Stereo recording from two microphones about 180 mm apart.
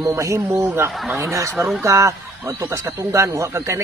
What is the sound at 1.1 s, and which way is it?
Speech, 20° right (ahead or behind).